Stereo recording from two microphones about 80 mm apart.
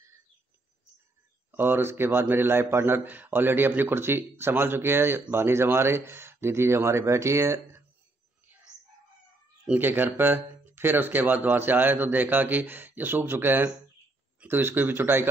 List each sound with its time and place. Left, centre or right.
1.5 s speech: right
9.8 s speech: right